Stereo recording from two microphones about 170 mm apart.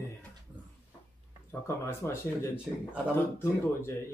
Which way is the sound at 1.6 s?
15° left (ahead or behind).